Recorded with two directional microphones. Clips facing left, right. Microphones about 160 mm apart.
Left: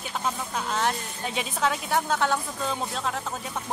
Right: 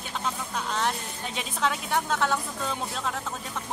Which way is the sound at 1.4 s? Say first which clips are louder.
Left 2 dB; 5° left (ahead or behind).